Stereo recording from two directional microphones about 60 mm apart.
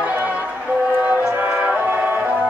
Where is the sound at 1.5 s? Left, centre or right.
Centre.